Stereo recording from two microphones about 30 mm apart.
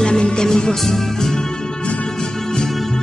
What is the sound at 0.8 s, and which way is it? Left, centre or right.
Music, centre.